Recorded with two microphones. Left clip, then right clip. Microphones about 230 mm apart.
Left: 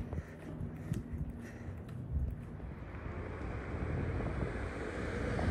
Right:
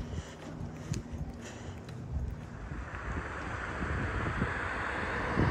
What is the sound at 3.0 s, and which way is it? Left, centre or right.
Waves, right.